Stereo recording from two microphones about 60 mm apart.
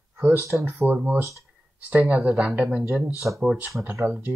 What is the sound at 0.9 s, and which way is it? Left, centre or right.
Speech, right.